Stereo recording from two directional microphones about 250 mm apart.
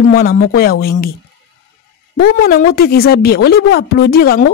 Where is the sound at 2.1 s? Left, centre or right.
Left.